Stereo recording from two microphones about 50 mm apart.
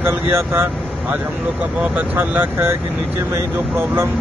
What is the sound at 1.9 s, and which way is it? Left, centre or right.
Speech, right.